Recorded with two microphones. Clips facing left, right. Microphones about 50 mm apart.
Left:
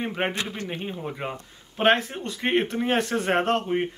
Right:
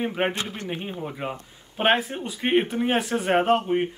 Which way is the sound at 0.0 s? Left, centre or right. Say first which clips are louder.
Right 2 dB; centre.